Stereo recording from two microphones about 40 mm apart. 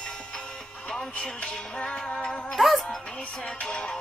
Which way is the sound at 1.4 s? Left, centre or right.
Left.